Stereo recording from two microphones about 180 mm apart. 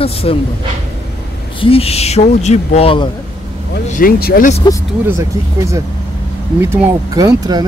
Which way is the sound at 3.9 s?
55° left (ahead or behind).